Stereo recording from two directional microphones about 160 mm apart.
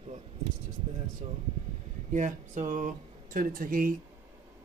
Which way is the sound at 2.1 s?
50° right (ahead or behind).